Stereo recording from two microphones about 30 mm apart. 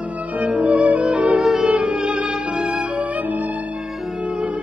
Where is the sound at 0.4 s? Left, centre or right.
Right.